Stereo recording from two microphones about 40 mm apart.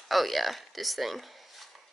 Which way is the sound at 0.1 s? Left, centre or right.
Centre.